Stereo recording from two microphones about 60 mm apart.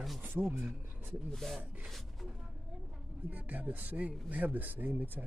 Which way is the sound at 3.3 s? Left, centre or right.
Right.